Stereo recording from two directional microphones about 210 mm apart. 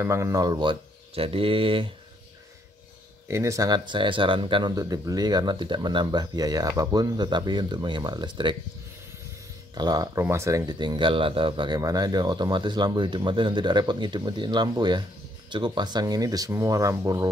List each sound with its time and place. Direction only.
0.0 s speech: 15° right (ahead or behind)
3.3 s speech: 15° right (ahead or behind)
9.8 s speech: 20° right (ahead or behind)